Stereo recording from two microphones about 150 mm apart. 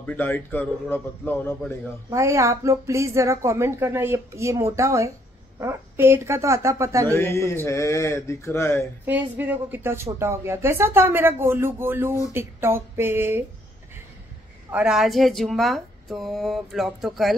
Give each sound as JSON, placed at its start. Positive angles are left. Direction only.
{"t": 0.0, "sound": "speech", "side_deg": 10}
{"t": 2.0, "sound": "a woman's voice", "side_deg": -20}
{"t": 7.1, "sound": "speech", "side_deg": 15}
{"t": 9.0, "sound": "speech", "side_deg": -10}
{"t": 14.7, "sound": "a woman's voice", "side_deg": -5}